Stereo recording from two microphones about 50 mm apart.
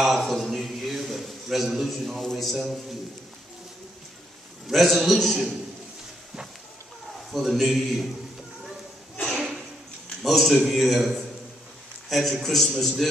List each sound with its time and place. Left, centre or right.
0.2 s a man's voice: centre
0.5 s a sound: centre
2.3 s a man's voice: centre
4.6 s a man's voice: centre
7.2 s a man's voice: centre
9.3 s a sound: centre
10.2 s a man's voice: centre